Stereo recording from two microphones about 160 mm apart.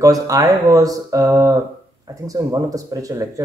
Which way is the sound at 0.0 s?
20° right (ahead or behind).